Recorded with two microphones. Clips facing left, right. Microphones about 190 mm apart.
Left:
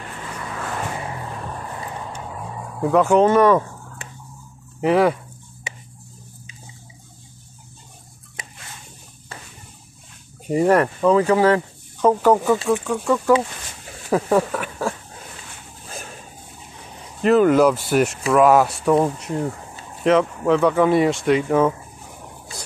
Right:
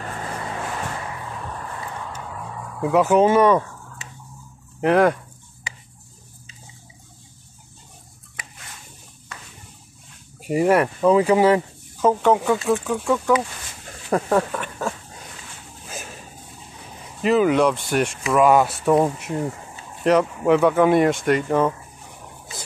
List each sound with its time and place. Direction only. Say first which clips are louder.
2.0 s vehicle: left 1 dB; 20° left (ahead or behind)
2.9 s speech: left 1 dB; 5° right (ahead or behind)
4.0 s a sound: left 3 dB; 55° left (ahead or behind)
4.7 s speech: even; centre (ahead or behind)
5.7 s a sound: left 3 dB; 20° left (ahead or behind)
8.4 s a sound: left 2 dB; 25° left (ahead or behind)
10.4 s speech: left 1 dB; 10° right (ahead or behind)
12.0 s speech: left 2 dB; centre (ahead or behind)
17.2 s speech: left 3 dB; centre (ahead or behind)